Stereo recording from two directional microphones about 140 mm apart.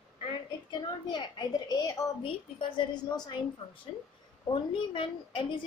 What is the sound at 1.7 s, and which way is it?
Speech, 25° left (ahead or behind).